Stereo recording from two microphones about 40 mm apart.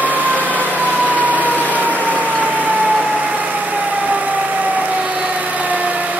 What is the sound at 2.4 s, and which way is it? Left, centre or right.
Vehicle, right.